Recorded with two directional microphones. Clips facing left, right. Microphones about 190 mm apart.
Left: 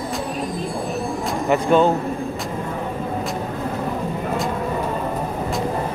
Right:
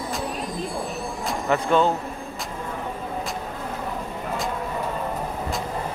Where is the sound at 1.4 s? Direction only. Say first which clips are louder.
Left 4 dB; 15° left (ahead or behind).